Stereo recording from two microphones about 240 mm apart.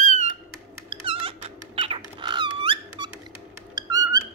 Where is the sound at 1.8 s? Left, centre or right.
Right.